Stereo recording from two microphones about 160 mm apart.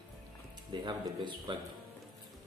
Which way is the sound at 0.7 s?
30° right (ahead or behind).